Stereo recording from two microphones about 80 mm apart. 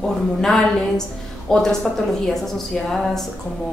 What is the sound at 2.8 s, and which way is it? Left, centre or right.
Speech, centre.